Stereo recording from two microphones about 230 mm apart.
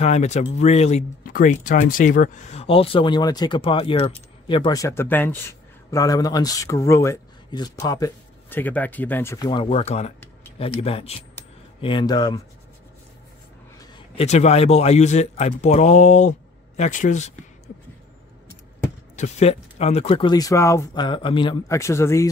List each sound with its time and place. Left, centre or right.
0.0 s speech: left
13.7 s speech: left
19.1 s speech: left; by 22.3 s centre